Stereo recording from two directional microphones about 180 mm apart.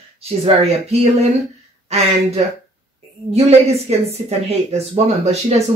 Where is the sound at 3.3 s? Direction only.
35° right (ahead or behind).